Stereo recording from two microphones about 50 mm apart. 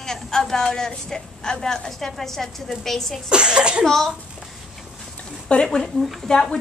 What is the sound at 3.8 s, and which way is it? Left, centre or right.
Speech, centre.